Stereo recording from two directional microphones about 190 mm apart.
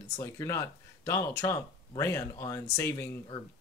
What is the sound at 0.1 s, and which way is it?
Speech, 15° left (ahead or behind).